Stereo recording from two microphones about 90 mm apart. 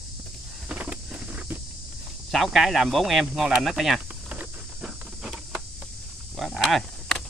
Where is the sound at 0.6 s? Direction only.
15° right (ahead or behind).